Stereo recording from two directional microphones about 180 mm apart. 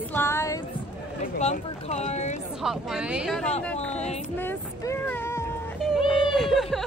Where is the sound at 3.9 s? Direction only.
35° left (ahead or behind).